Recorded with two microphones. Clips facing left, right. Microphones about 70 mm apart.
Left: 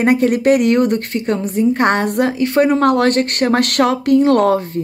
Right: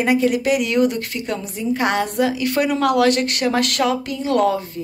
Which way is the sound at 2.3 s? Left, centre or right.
Left.